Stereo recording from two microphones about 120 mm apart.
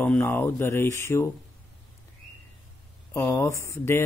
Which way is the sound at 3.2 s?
15° left (ahead or behind).